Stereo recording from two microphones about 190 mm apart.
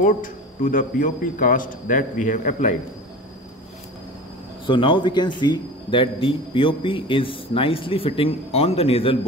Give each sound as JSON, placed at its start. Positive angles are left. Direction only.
{"t": 0.0, "sound": "speech", "side_deg": 45}
{"t": 4.6, "sound": "speech", "side_deg": 25}